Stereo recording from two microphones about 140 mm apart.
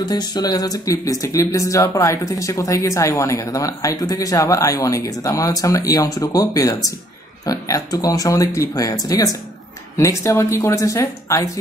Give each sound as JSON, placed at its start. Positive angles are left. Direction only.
{"t": 0.0, "sound": "speech", "side_deg": 30}